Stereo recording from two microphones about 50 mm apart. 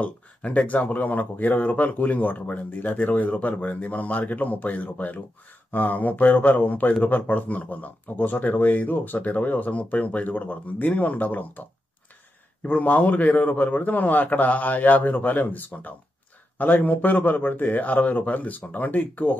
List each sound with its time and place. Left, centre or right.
0.0 s speech: left
12.6 s speech: left